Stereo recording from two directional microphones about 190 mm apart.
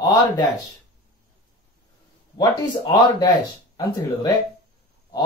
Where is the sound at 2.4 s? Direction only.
20° left (ahead or behind).